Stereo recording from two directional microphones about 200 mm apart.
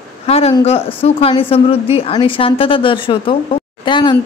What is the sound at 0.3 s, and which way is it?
Speech, 30° left (ahead or behind).